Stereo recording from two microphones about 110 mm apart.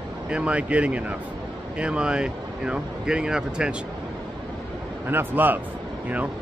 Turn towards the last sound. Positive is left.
turn(degrees=-15)  # may be behind; listen again after turning